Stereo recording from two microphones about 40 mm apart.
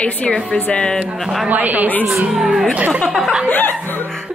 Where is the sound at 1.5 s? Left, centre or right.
Right.